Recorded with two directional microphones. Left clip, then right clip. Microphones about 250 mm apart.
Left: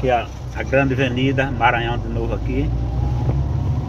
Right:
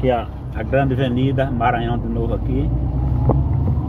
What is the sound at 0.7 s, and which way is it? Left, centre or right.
Speech, centre.